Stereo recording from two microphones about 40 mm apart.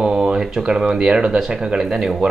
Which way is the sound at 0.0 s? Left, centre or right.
Right.